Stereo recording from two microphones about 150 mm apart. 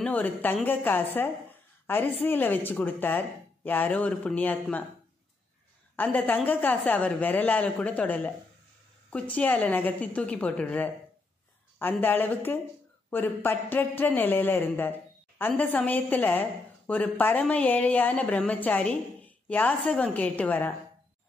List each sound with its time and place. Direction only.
0.0 s a man's voice: 10° left (ahead or behind)
1.1 s a sound: 15° left (ahead or behind)
2.2 s a man's voice: 15° left (ahead or behind)
5.9 s a man's voice: 10° left (ahead or behind)